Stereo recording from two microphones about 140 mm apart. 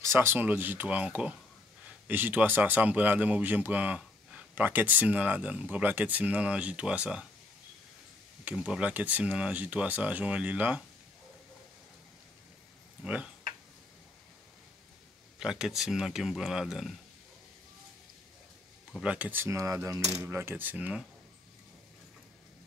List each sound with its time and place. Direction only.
0.0 s a man's voice: 15° right (ahead or behind)
8.5 s a man's voice: 10° right (ahead or behind)
13.0 s a man's voice: 10° right (ahead or behind)
15.3 s speech: 5° right (ahead or behind)
18.9 s a man's voice: 10° right (ahead or behind)